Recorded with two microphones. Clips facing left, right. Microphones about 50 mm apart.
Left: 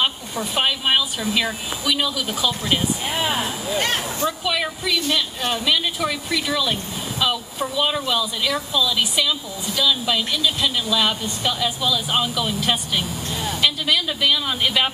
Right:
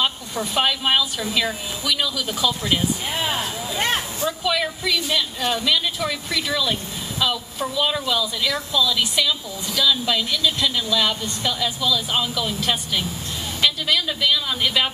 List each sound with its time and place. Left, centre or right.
0.0 s speech: centre
3.6 s speech: centre
4.5 s speech: centre
6.4 s a woman's voice: centre